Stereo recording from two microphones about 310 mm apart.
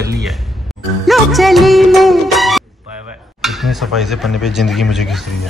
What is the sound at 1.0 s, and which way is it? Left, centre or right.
Music, centre.